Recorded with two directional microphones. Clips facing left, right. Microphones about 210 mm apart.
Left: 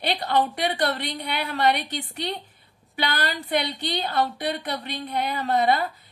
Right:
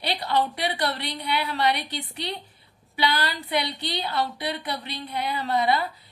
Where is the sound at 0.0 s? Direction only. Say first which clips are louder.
Left 2 dB; 50° left (ahead or behind).